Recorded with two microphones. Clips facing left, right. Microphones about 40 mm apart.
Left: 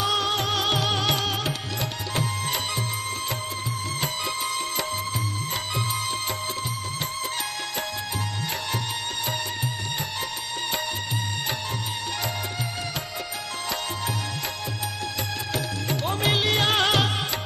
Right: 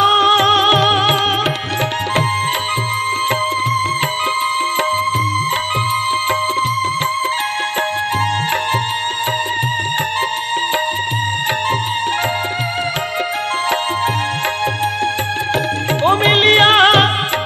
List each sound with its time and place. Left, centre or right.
0.0 s music: right
15.9 s music: right